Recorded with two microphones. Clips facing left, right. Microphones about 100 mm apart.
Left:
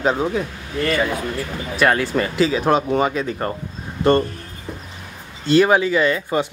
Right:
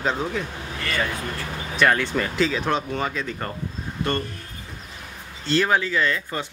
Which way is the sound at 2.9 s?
15° left (ahead or behind).